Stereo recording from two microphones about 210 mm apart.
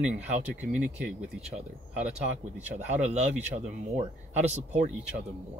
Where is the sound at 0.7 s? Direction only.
5° right (ahead or behind).